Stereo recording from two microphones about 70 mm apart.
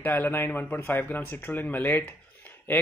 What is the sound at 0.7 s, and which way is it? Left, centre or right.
A man's voice, left.